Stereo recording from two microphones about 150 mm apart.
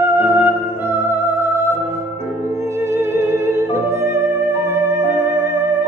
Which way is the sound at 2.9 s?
15° right (ahead or behind).